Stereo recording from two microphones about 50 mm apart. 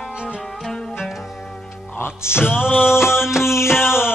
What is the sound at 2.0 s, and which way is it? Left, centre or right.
Music, left.